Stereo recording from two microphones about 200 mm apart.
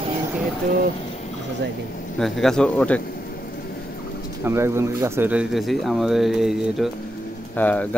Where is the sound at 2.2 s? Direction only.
Centre (ahead or behind).